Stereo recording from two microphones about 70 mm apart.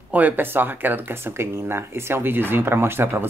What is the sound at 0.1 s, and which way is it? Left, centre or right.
Speech, right.